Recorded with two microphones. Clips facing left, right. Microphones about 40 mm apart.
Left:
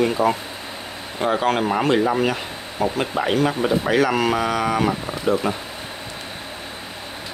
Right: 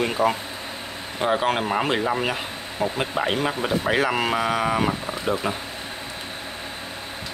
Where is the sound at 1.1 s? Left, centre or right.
Centre.